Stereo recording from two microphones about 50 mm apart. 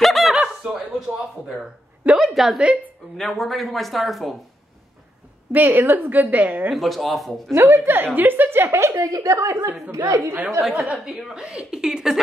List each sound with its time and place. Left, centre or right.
0.0 s snicker: centre
1.0 s a sound: centre
2.1 s speech: centre
5.5 s a woman's voice: right
6.7 s speech: centre
7.6 s a woman's voice: right
8.6 s a woman's voice: right
9.8 s a woman's voice: right
10.6 s a woman's voice: centre